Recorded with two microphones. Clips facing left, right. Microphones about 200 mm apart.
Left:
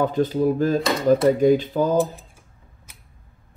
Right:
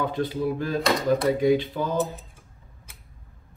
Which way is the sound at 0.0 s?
40° left (ahead or behind).